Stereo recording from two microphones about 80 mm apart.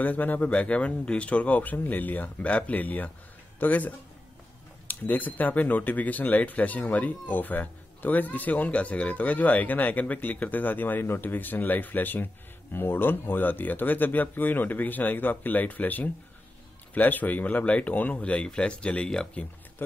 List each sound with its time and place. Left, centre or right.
0.0 s speech: left